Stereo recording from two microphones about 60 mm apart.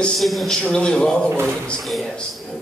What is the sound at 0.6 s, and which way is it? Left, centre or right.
Speech, centre.